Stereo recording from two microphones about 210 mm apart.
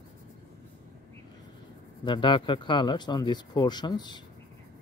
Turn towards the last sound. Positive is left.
turn(degrees=20)  # may be behind; listen again after turning